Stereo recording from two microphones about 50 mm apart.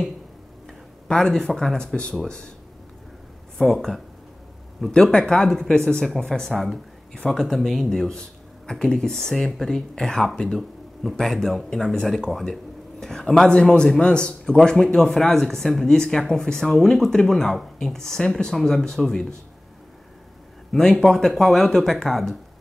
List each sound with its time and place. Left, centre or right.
1.0 s speech: centre
3.5 s speech: centre
5.1 s speech: centre
20.7 s speech: centre